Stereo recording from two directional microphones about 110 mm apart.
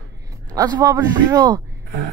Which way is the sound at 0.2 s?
35° right (ahead or behind).